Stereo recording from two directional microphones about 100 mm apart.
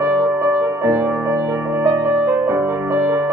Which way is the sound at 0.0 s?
20° right (ahead or behind).